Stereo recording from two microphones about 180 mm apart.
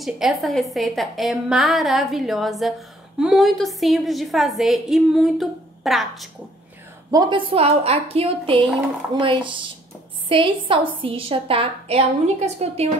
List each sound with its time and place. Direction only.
0.0 s a woman's voice: centre (ahead or behind)
7.1 s a woman's voice: 25° right (ahead or behind)